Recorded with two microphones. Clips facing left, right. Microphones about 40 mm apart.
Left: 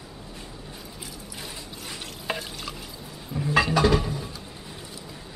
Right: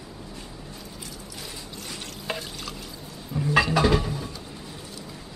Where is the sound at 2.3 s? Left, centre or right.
Centre.